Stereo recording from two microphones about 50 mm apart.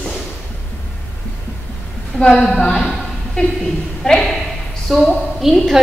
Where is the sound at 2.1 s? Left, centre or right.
Left; by 4.4 s centre.